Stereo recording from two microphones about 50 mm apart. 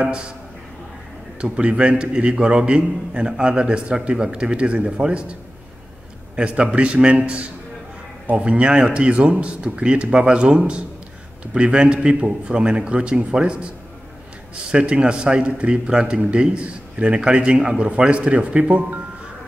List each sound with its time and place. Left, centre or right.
1.4 s a man's voice: right